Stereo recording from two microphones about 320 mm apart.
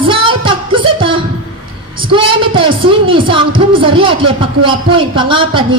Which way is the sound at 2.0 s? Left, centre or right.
Centre.